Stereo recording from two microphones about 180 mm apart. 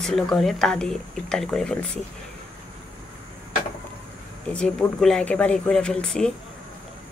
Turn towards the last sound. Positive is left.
turn(degrees=5)  # may be behind; listen again after turning